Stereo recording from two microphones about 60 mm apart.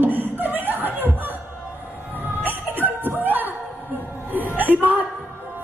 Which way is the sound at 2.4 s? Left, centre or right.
Right.